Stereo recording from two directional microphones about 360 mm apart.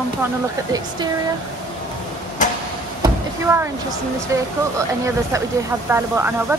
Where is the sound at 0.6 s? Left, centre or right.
Centre.